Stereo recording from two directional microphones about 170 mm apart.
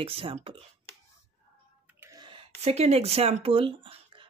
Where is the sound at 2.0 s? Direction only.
25° right (ahead or behind).